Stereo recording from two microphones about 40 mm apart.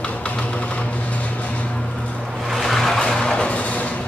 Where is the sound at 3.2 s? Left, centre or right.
Left.